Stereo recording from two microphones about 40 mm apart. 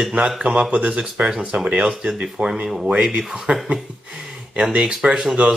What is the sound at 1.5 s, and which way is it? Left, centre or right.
Speech, right.